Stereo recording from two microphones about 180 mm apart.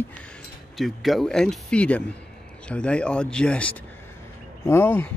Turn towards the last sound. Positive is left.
turn(degrees=10)  # may be behind; listen again after turning